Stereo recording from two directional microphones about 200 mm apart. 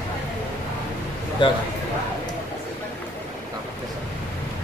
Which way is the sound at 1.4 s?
25° left (ahead or behind).